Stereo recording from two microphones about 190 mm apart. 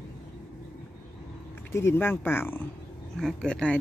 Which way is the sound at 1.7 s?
10° left (ahead or behind).